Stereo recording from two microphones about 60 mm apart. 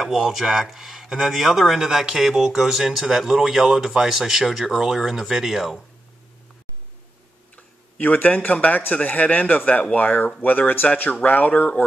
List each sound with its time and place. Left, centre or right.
0.0 s speech: centre
7.5 s speech: left